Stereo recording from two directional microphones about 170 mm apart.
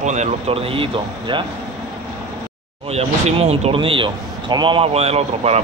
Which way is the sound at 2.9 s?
35° right (ahead or behind).